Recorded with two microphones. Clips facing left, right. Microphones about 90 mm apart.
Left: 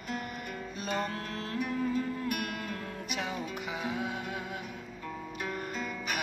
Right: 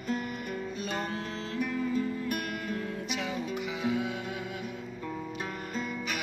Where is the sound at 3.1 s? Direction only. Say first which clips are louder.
Right 1 dB; 35° left (ahead or behind).